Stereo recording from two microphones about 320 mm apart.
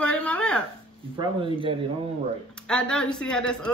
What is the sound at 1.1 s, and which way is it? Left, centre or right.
Speech, centre.